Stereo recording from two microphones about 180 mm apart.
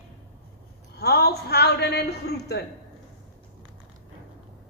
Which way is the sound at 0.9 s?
65° left (ahead or behind).